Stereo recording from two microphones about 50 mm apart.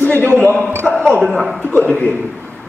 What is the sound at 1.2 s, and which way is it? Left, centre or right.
Speech, centre.